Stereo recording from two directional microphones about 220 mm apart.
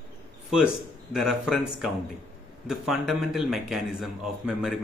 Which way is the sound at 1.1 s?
Centre (ahead or behind).